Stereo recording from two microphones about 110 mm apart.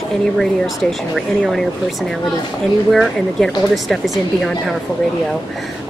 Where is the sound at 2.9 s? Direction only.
Centre (ahead or behind).